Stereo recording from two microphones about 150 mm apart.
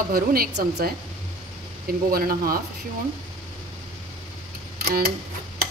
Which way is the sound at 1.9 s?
75° right (ahead or behind).